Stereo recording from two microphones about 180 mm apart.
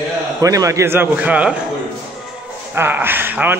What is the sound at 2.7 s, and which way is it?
Speech, 10° right (ahead or behind).